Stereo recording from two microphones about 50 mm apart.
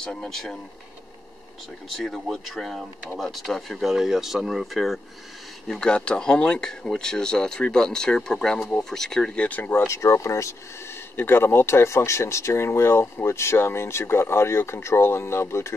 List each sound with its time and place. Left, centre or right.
0.0 s speech: centre
2.0 s speech: centre
3.9 s speech: centre
5.7 s speech: centre
9.4 s speech: left
9.8 s speech: left
11.1 s speech: left